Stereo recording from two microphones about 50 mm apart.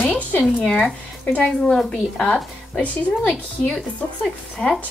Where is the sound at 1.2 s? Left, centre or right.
Left.